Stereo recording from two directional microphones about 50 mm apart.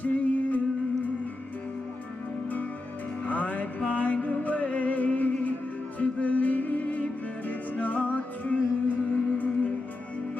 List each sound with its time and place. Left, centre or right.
0.0 s music: left
3.3 s music: left